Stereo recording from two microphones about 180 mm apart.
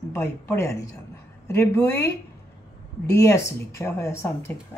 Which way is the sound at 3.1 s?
15° left (ahead or behind).